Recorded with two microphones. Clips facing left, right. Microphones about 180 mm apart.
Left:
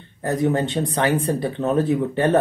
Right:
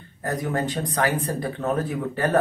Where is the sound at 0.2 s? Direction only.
25° left (ahead or behind).